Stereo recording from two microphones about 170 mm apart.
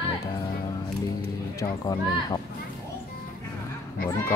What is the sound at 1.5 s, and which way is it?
Speech, 20° left (ahead or behind).